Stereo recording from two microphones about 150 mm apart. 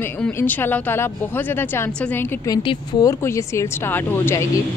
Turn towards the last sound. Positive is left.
turn(degrees=15)  # may be behind; listen again after turning